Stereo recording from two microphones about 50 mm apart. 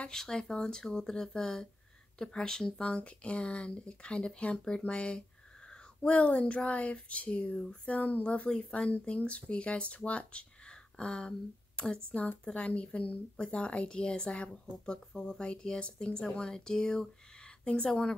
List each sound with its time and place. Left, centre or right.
0.1 s speech: centre
7.9 s speech: left